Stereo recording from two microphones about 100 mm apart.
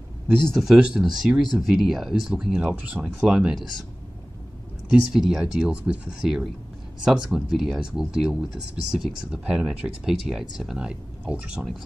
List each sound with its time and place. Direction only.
0.6 s speech: 5° right (ahead or behind)
2.6 s speech: 15° right (ahead or behind)
4.8 s speech: 5° right (ahead or behind)